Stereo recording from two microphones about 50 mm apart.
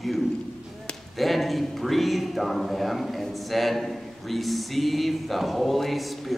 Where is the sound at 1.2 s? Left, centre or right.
Centre.